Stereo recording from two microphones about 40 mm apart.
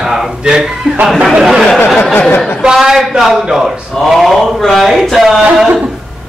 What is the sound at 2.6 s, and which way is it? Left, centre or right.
A man's voice, centre.